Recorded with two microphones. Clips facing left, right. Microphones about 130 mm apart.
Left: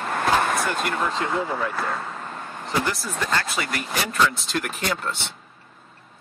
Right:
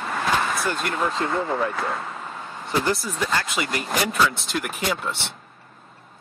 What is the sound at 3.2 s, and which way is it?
Speech, 15° right (ahead or behind).